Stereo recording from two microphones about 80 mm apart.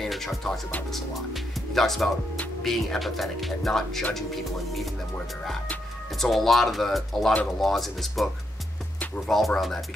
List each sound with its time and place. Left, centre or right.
0.0 s speech: centre
6.1 s speech: centre
9.3 s speech: centre